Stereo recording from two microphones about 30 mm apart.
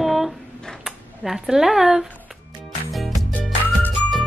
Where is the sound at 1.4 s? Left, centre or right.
Centre.